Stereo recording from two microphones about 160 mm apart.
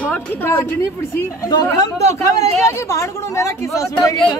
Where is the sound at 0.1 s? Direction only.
15° left (ahead or behind).